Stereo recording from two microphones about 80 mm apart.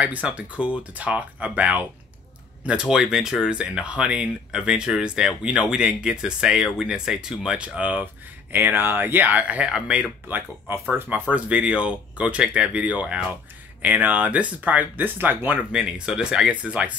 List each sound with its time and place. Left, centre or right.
0.0 s speech: centre
10.2 s speech: right
15.7 s speech: centre